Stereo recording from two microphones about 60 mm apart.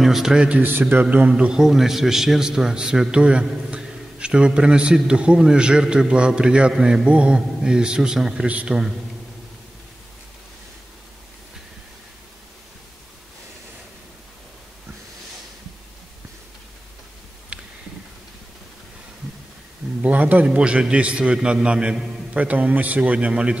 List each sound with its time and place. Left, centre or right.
0.0 s a man's voice: centre
0.6 s a man's voice: right
1.3 s a man's voice: centre
17.5 s a sound: right
20.0 s a man's voice: right
20.5 s a man's voice: centre